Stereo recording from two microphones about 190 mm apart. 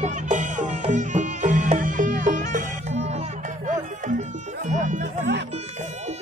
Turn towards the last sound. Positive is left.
turn(degrees=-40)  # may be behind; listen again after turning